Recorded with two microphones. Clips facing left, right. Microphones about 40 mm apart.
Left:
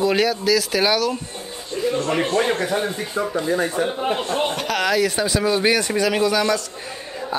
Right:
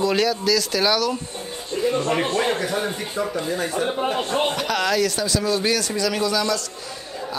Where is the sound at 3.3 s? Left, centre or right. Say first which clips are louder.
Left 3 dB; left.